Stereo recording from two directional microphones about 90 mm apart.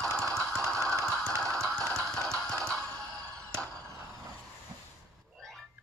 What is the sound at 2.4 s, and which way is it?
Music, 5° left (ahead or behind).